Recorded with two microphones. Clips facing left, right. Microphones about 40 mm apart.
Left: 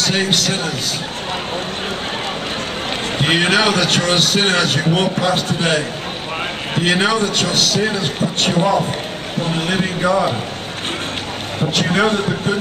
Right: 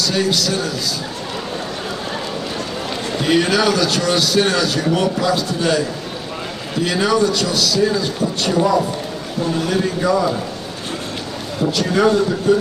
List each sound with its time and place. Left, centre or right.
0.0 s a man's voice: left
3.2 s a man's voice: left
11.7 s a man's voice: left